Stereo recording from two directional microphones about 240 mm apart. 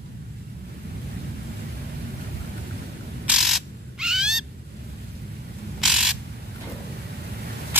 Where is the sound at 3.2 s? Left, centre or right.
Centre.